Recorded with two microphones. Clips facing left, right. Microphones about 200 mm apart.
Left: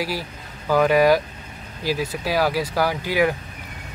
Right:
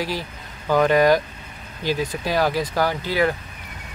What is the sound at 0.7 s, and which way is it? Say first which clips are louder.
Speech: even; 5° left (ahead or behind).